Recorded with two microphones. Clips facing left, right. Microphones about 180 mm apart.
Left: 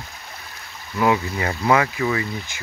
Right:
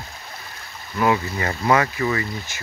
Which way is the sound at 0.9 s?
15° left (ahead or behind).